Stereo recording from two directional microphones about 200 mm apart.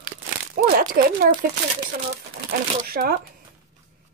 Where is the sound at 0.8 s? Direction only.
45° right (ahead or behind).